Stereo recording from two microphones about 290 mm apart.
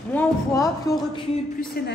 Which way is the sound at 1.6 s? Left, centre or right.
Left.